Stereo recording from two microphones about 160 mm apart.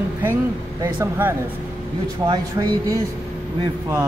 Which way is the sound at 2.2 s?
25° right (ahead or behind).